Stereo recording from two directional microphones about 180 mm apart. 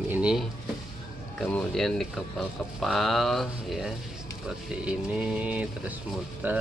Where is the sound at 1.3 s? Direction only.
5° left (ahead or behind).